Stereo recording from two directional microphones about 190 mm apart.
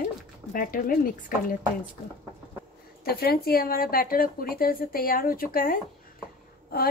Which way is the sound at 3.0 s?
55° left (ahead or behind).